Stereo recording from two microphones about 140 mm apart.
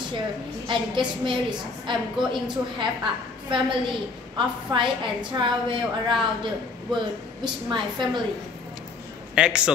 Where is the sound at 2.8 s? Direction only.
35° right (ahead or behind).